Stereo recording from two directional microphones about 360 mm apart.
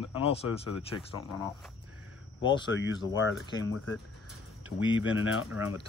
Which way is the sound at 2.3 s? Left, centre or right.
Left.